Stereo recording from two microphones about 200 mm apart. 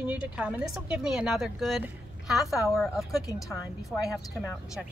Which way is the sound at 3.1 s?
15° left (ahead or behind).